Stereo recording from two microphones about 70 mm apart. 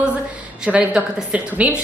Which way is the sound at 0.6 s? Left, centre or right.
Centre.